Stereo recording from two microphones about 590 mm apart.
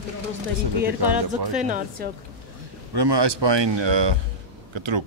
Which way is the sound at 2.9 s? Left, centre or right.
Right.